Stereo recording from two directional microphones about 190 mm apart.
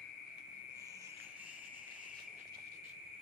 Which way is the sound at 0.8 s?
15° right (ahead or behind).